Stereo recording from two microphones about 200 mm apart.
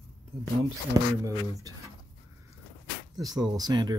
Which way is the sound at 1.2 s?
15° right (ahead or behind).